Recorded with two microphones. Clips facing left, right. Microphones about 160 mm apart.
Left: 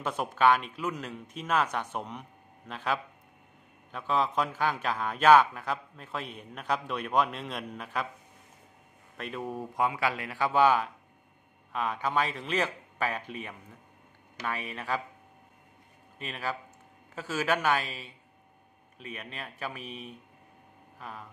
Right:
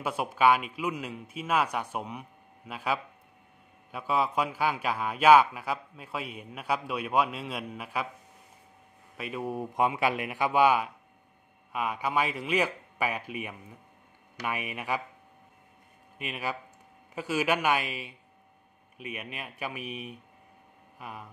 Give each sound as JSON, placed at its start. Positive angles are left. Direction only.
{"t": 0.0, "sound": "a man's voice", "side_deg": -10}
{"t": 9.1, "sound": "a man's voice", "side_deg": -5}
{"t": 9.8, "sound": "a man's voice", "side_deg": -20}
{"t": 16.2, "sound": "a man's voice", "side_deg": -10}